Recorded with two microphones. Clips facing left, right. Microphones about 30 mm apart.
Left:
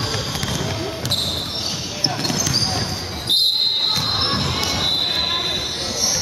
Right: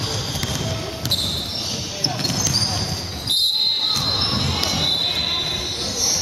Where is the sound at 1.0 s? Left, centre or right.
Centre.